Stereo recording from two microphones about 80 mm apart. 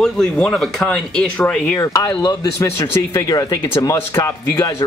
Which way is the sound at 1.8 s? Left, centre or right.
Left.